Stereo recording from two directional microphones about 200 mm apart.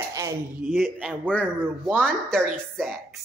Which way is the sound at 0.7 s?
Centre (ahead or behind).